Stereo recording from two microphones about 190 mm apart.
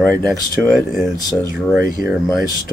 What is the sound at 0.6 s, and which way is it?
Speech, centre (ahead or behind).